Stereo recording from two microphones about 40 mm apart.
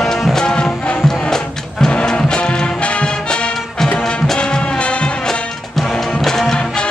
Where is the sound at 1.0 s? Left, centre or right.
Centre; by 5.1 s left.